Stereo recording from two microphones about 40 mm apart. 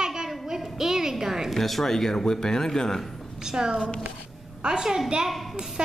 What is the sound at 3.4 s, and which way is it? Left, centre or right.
A woman's voice, centre.